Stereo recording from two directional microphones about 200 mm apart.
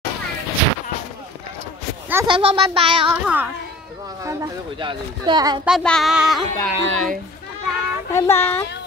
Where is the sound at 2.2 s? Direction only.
25° right (ahead or behind).